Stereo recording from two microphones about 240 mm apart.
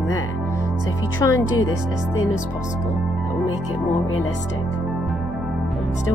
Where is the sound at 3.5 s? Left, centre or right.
Left.